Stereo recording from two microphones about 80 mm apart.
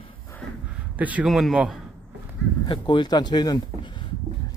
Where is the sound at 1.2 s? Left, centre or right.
Centre.